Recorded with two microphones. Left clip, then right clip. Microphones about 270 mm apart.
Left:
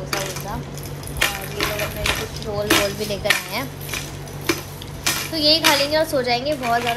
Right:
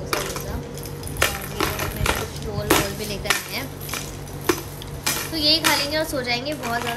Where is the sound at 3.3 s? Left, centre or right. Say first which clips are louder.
Left 4 dB; centre.